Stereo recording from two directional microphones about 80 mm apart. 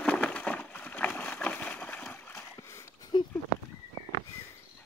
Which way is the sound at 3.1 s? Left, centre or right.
Left.